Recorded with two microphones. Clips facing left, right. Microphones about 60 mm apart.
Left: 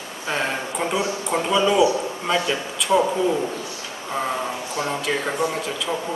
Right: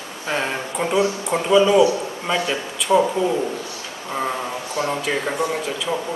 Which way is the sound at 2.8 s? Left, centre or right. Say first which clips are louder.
Right 2 dB; centre.